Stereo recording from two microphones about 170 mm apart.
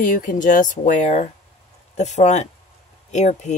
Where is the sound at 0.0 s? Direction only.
50° left (ahead or behind).